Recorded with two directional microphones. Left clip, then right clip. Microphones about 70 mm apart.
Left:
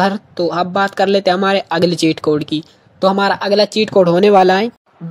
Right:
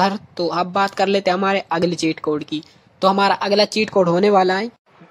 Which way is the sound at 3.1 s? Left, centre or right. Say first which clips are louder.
Left 2 dB; left.